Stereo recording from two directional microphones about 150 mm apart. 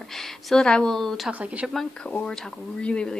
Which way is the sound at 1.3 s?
10° right (ahead or behind).